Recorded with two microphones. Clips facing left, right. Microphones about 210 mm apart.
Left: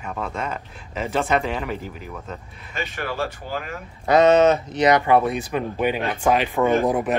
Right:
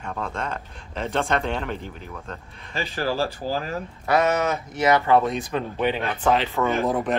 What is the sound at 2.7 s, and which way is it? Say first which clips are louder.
Speech: right 3 dB; 30° right (ahead or behind).